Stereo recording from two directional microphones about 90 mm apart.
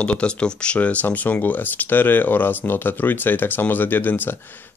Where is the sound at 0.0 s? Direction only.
15° left (ahead or behind).